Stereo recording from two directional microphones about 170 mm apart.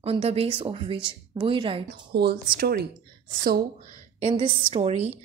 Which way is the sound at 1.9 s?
70° right (ahead or behind).